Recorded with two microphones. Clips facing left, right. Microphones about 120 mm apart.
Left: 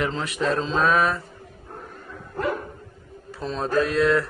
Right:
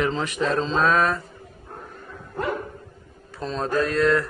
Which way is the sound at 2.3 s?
20° right (ahead or behind).